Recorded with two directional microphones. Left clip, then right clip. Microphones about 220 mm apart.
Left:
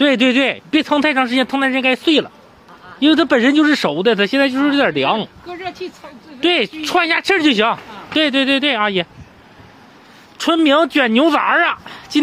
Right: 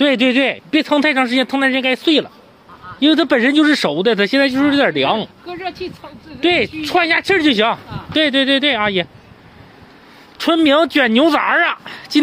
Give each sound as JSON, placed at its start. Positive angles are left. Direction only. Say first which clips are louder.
{"t": 0.0, "sound": "speech", "louder": "even", "side_deg": 0}
{"t": 5.5, "sound": "a woman's voice", "louder": "right 3 dB", "side_deg": -25}
{"t": 6.4, "sound": "speech", "louder": "even", "side_deg": 5}
{"t": 10.3, "sound": "speech", "louder": "even", "side_deg": 0}